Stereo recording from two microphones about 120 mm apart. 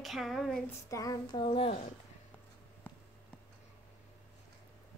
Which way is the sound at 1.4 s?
50° left (ahead or behind).